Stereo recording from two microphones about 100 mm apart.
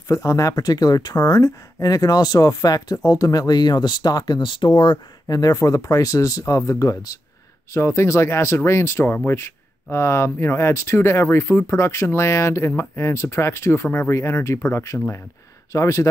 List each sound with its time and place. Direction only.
0.1 s speech: 35° left (ahead or behind)